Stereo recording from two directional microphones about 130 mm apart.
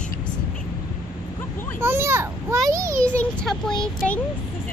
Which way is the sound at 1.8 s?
20° right (ahead or behind).